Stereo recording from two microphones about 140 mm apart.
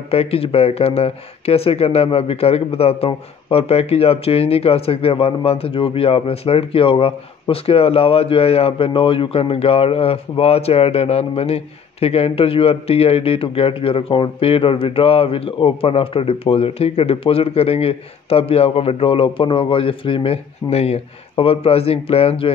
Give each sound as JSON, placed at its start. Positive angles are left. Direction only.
{"t": 0.1, "sound": "speech", "side_deg": 45}